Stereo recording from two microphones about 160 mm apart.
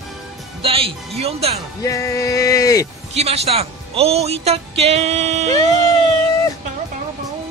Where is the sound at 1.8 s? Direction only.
20° left (ahead or behind).